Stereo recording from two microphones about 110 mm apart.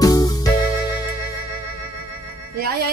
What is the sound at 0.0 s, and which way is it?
Music, 35° left (ahead or behind).